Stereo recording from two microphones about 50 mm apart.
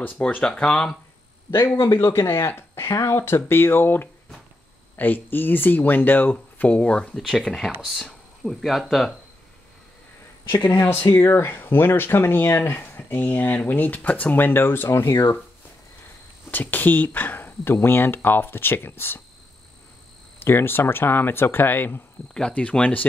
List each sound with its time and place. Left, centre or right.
0.4 s speech: centre
1.8 s speech: left
3.3 s speech: left
6.8 s speech: left
7.2 s speech: centre
10.5 s speech: left
14.3 s speech: left
16.4 s speech: left
20.3 s speech: left
22.5 s speech: left